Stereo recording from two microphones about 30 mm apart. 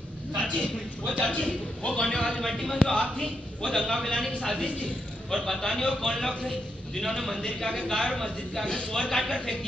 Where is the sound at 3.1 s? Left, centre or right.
Left.